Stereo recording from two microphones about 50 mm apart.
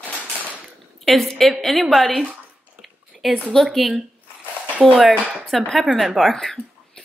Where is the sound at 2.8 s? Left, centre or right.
Centre.